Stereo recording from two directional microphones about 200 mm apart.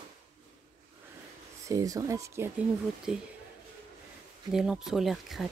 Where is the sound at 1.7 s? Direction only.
15° right (ahead or behind).